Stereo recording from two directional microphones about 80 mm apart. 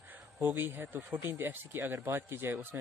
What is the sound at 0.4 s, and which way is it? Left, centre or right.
A man's voice, right.